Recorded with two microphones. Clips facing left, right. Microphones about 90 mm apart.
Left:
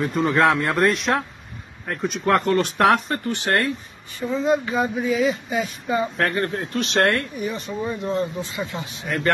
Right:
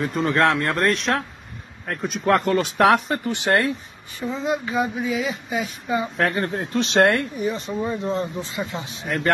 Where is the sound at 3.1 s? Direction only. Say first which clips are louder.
Right 2 dB; 15° right (ahead or behind).